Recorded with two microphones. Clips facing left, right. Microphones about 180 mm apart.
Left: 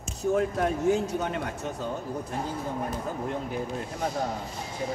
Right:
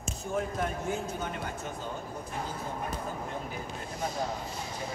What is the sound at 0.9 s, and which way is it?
Speech, 75° left (ahead or behind).